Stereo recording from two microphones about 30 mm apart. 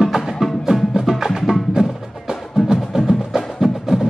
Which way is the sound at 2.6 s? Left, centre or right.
Right.